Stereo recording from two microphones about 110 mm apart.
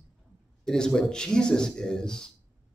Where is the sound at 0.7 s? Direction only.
5° left (ahead or behind).